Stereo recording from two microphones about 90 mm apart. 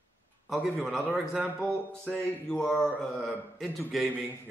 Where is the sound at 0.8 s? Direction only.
5° left (ahead or behind).